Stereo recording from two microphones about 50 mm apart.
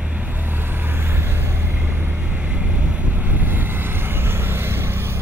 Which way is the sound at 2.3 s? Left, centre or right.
Right.